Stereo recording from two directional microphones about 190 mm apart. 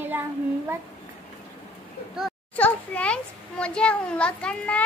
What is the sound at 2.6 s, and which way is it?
A child's voice, 5° left (ahead or behind).